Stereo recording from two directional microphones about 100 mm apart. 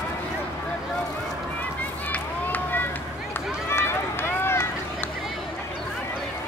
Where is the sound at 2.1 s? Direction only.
20° left (ahead or behind).